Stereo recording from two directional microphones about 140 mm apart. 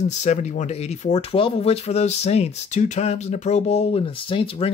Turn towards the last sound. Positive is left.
turn(degrees=40)  # may be behind; listen again after turning